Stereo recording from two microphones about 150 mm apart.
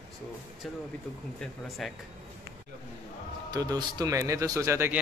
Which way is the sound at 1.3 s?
Centre (ahead or behind).